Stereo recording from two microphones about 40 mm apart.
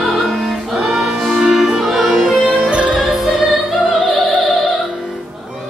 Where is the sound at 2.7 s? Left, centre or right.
Right.